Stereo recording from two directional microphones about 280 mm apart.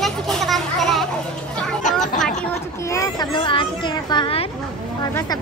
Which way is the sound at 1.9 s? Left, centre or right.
Centre.